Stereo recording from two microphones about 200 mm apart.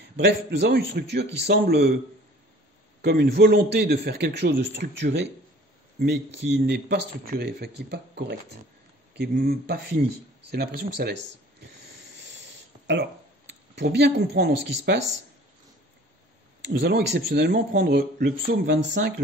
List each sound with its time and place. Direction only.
0.0 s speech: 60° right (ahead or behind)
3.0 s speech: 55° right (ahead or behind)
12.8 s speech: 60° right (ahead or behind)
16.6 s speech: 60° right (ahead or behind)